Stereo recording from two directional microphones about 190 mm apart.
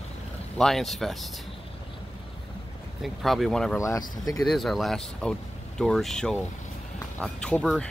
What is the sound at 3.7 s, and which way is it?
Speech, 15° left (ahead or behind).